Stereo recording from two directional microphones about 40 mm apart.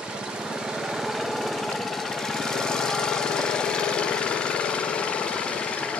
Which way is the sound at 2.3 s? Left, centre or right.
Centre.